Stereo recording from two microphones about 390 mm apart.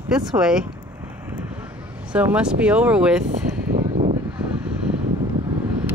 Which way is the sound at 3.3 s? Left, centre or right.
Right.